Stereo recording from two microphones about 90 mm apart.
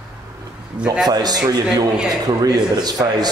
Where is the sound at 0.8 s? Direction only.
15° right (ahead or behind).